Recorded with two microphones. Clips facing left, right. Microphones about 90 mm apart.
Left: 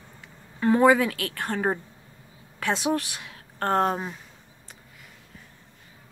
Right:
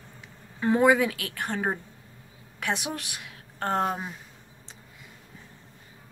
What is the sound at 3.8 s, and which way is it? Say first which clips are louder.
Speech: left 3 dB; centre (ahead or behind).